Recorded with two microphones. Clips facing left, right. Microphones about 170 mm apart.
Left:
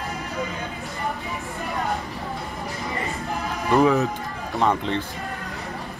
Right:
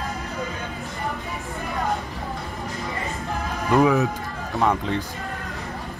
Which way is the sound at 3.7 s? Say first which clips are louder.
Even; 5° right (ahead or behind).